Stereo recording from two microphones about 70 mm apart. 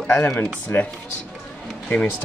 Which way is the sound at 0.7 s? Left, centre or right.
Left.